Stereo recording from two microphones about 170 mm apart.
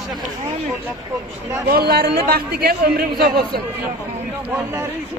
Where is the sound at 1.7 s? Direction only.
65° right (ahead or behind).